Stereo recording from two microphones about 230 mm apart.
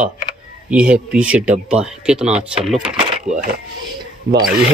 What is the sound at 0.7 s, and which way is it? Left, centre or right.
Speech, centre.